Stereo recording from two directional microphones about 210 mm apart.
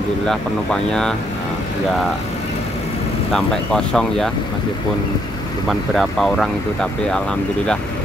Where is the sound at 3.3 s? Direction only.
Centre (ahead or behind).